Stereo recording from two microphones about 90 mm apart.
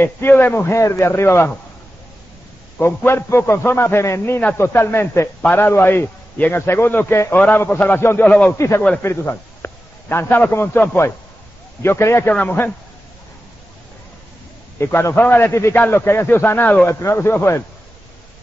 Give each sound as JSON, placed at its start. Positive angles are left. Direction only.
{"t": 0.0, "sound": "a man's voice", "side_deg": 25}
{"t": 2.8, "sound": "a man's voice", "side_deg": 25}
{"t": 8.5, "sound": "a man's voice", "side_deg": 30}
{"t": 12.3, "sound": "a man's voice", "side_deg": 20}
{"t": 14.8, "sound": "a man's voice", "side_deg": 30}